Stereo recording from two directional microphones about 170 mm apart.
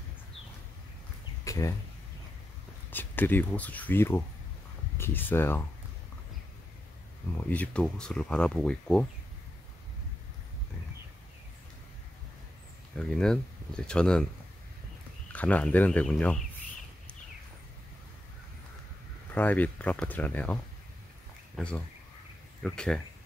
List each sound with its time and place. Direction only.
1.4 s a sound: 20° left (ahead or behind)
2.9 s speech: 10° left (ahead or behind)
7.4 s speech: 10° left (ahead or behind)
12.9 s speech: 5° left (ahead or behind)
15.3 s speech: 10° left (ahead or behind)
19.3 s speech: 10° left (ahead or behind)
21.5 s speech: 5° left (ahead or behind)